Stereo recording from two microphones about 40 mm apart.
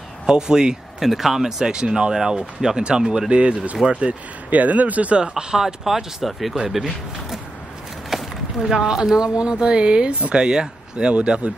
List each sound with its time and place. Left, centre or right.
0.3 s speech: centre
1.0 s speech: centre
4.5 s speech: right
5.3 s speech: centre
5.9 s speech: centre
8.1 s a sound: centre
8.6 s speech: centre